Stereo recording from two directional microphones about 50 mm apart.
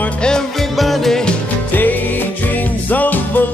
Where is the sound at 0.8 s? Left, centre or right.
Centre.